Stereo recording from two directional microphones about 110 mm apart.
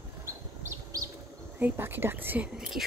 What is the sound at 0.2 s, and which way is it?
Bird, 25° right (ahead or behind).